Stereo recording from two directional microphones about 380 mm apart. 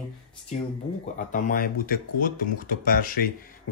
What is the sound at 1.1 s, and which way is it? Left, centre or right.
Speech, left.